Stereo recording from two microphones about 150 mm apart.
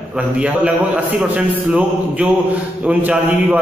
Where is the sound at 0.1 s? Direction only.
10° right (ahead or behind).